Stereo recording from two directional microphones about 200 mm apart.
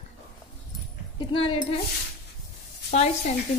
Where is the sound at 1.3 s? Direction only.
25° left (ahead or behind).